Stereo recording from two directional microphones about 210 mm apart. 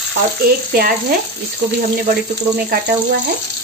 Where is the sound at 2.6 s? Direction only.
55° right (ahead or behind).